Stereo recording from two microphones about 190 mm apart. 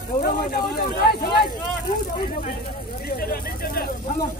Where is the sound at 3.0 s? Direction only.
50° left (ahead or behind).